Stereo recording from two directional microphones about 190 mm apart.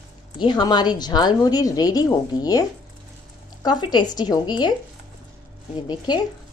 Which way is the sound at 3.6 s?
20° left (ahead or behind).